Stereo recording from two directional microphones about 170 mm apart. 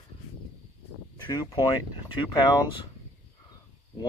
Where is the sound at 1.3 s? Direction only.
20° left (ahead or behind).